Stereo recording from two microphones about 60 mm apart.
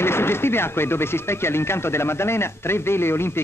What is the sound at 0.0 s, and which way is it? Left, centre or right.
Speech, left.